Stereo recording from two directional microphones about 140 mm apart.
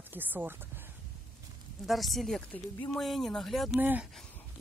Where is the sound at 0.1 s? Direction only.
15° right (ahead or behind).